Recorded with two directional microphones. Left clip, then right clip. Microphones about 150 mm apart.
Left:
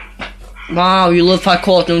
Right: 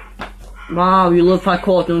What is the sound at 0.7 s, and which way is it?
Speech, 20° left (ahead or behind).